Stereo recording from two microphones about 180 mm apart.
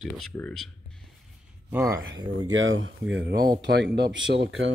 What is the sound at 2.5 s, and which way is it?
Speech, 90° right.